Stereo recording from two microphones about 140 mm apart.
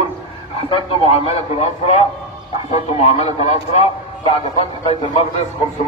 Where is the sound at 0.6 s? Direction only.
40° left (ahead or behind).